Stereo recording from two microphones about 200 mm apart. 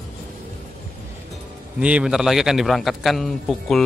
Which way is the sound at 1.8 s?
5° right (ahead or behind).